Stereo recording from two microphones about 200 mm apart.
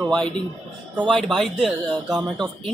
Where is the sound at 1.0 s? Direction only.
Centre (ahead or behind).